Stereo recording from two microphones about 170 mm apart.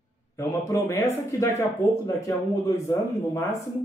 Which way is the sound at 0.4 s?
15° left (ahead or behind).